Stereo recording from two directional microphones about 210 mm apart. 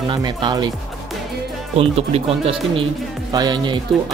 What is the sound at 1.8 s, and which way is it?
Speech, 30° right (ahead or behind).